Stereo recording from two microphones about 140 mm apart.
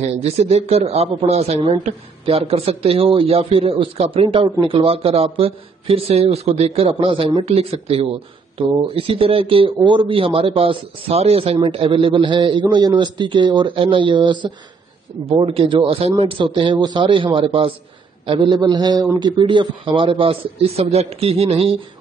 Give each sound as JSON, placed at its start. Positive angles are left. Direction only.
{"t": 0.0, "sound": "speech", "side_deg": -50}